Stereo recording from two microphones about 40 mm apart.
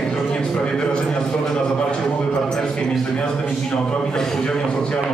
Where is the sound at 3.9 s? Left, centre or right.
Centre.